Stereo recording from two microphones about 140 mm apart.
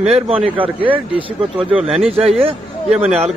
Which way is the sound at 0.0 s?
45° right (ahead or behind).